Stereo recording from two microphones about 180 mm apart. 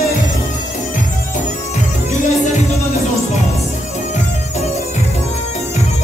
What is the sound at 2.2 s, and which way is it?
Music, 40° left (ahead or behind).